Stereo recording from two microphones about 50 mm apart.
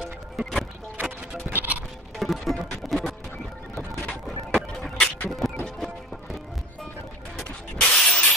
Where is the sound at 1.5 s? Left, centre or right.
Right.